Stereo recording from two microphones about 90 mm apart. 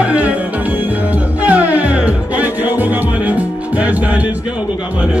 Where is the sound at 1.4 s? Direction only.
15° right (ahead or behind).